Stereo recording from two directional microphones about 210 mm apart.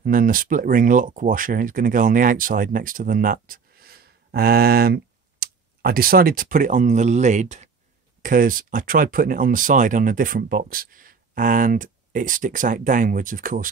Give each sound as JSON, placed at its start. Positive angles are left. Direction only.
{"t": 0.0, "sound": "speech", "side_deg": -40}